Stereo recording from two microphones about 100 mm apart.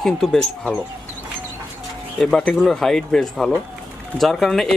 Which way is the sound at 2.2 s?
5° left (ahead or behind).